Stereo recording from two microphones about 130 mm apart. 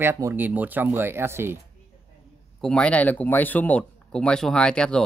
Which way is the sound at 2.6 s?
10° left (ahead or behind).